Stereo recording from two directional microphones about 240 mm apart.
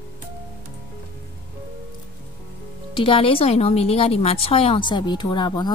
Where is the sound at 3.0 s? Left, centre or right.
Left.